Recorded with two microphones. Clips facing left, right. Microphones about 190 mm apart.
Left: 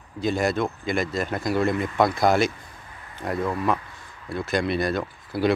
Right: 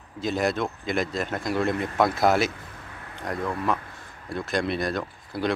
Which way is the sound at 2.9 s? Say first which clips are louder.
Right 3 dB; 65° right (ahead or behind).